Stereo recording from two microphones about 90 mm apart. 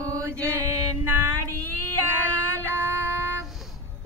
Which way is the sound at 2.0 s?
25° right (ahead or behind).